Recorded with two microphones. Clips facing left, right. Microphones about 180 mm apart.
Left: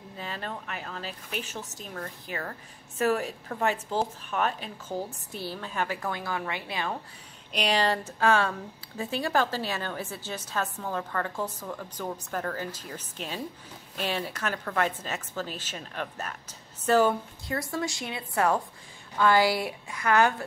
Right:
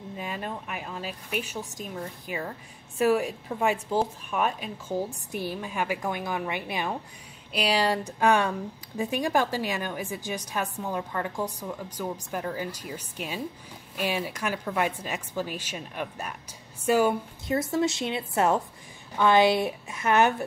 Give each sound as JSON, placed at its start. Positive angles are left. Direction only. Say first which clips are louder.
{"t": 0.2, "sound": "speech", "louder": "right 1 dB", "side_deg": -15}
{"t": 17.5, "sound": "a woman's voice", "louder": "right 6 dB", "side_deg": -20}